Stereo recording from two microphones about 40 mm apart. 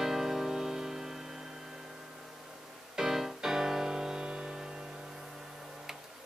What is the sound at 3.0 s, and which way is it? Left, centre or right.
Music, centre.